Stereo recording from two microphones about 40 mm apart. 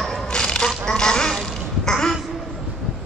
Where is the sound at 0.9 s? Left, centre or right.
Centre.